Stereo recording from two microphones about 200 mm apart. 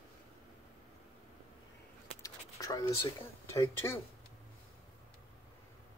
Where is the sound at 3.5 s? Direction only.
15° left (ahead or behind).